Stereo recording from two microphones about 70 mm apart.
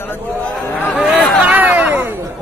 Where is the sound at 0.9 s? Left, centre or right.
Right.